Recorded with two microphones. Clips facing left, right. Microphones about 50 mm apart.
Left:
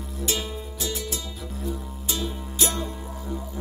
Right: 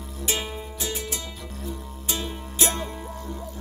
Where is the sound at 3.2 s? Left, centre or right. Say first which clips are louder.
Left 2 dB; centre.